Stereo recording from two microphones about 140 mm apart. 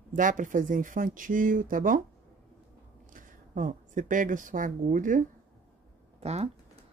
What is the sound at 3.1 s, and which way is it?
Speech, 65° right (ahead or behind).